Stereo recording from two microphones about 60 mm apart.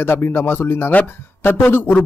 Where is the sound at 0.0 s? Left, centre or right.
Left.